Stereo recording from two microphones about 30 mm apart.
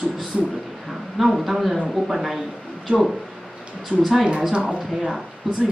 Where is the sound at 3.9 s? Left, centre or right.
Right.